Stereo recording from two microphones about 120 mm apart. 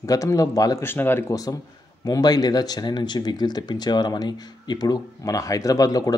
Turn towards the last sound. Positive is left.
turn(degrees=30)  # may be behind; listen again after turning